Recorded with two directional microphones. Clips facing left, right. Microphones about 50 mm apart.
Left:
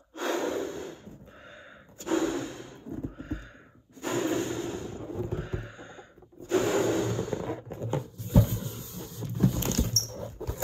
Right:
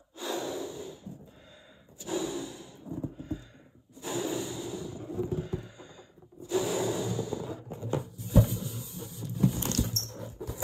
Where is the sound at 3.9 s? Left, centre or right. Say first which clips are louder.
Left 4 dB; left.